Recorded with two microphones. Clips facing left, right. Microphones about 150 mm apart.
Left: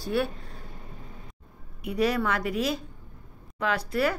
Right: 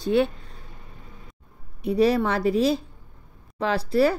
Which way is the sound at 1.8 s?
30° right (ahead or behind).